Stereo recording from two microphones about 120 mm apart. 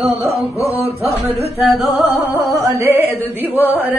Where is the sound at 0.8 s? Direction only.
60° right (ahead or behind).